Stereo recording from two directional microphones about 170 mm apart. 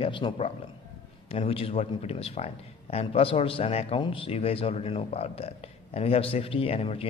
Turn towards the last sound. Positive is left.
turn(degrees=35)  # may be behind; listen again after turning